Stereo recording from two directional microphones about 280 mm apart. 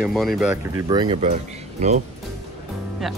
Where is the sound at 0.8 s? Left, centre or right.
Centre.